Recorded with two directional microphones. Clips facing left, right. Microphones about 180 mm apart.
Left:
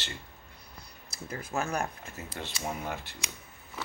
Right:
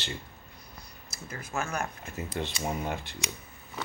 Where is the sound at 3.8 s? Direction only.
5° left (ahead or behind).